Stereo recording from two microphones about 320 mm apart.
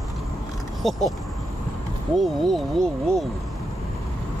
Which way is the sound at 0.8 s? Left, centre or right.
Centre.